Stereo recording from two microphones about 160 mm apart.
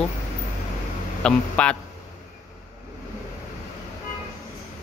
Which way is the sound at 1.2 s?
5° left (ahead or behind).